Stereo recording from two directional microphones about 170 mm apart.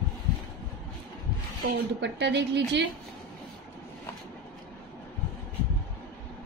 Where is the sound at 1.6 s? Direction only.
90° right.